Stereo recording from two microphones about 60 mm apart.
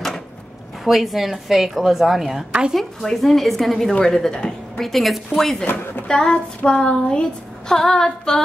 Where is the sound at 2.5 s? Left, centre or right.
Centre.